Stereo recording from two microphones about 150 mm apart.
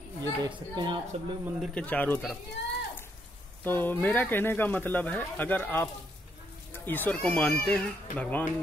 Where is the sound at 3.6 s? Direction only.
15° left (ahead or behind).